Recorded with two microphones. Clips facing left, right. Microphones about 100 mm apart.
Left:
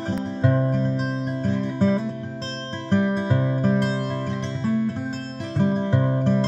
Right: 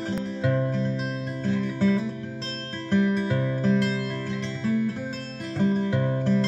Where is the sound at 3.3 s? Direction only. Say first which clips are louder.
Left 2 dB; 25° left (ahead or behind).